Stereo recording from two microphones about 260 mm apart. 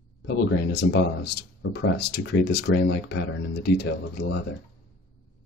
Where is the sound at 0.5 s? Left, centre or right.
Left.